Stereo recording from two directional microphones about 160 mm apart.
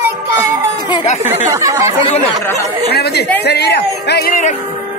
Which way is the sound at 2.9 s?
90° left.